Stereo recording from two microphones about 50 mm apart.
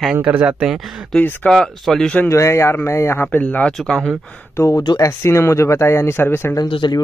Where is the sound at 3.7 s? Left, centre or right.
Centre.